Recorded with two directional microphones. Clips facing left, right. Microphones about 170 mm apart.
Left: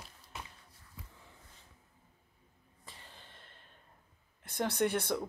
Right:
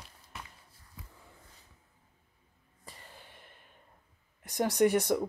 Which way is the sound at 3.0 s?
10° right (ahead or behind).